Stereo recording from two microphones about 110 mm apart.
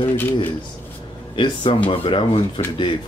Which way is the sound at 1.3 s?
50° left (ahead or behind).